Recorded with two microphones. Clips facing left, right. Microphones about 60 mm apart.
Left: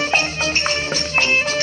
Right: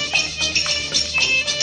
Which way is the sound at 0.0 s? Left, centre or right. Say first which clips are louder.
Left 5 dB; left.